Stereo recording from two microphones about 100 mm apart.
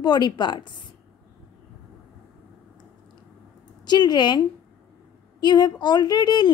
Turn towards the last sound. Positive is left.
turn(degrees=45)  # may be behind; listen again after turning